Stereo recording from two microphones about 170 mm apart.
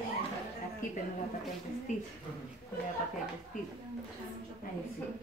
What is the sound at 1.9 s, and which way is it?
Speech, 45° left (ahead or behind).